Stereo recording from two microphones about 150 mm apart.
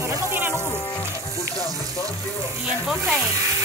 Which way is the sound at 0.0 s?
20° right (ahead or behind).